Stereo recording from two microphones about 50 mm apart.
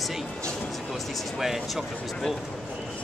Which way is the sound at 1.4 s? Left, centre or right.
Centre.